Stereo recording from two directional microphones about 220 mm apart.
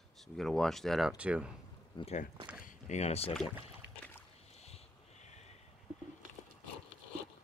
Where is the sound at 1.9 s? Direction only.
25° left (ahead or behind).